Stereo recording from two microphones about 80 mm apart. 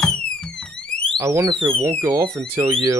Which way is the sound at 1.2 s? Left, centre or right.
Right.